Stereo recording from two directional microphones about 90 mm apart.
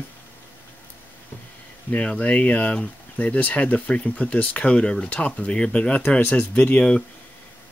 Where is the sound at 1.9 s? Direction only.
10° left (ahead or behind).